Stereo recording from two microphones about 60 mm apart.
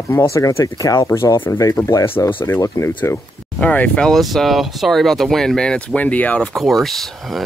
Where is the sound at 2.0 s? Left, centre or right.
Left.